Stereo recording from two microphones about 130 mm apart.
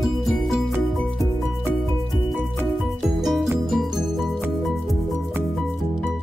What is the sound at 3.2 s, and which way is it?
Music, centre (ahead or behind).